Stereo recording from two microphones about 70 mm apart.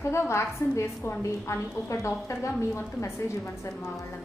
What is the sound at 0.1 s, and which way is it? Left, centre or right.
A woman's voice, left.